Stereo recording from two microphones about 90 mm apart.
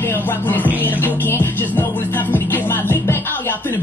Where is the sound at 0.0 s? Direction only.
25° left (ahead or behind).